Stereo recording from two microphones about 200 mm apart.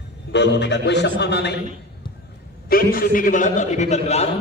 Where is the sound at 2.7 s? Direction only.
45° left (ahead or behind).